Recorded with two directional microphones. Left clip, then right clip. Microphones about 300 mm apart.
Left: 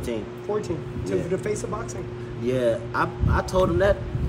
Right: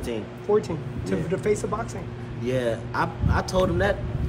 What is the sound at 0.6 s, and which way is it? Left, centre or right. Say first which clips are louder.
Speech: right 2 dB; right.